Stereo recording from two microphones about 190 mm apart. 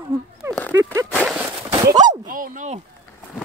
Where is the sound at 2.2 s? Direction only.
45° right (ahead or behind).